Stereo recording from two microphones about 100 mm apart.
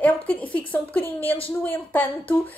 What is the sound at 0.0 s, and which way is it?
A woman's voice, 15° left (ahead or behind).